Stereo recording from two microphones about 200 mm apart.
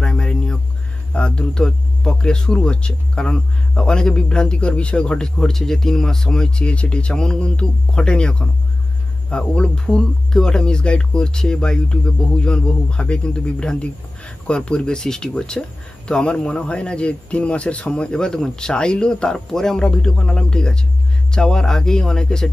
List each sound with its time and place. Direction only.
0.0 s music: 5° left (ahead or behind)
1.1 s speech: 5° left (ahead or behind)